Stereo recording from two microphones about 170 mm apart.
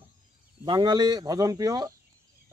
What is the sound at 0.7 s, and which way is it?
Speech, 25° right (ahead or behind).